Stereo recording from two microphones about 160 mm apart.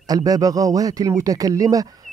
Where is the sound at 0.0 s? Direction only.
25° right (ahead or behind).